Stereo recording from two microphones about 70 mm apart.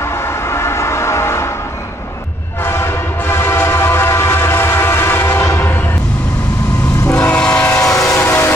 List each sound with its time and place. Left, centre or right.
0.5 s music: left
2.6 s train: left
7.2 s train: centre
7.8 s train: left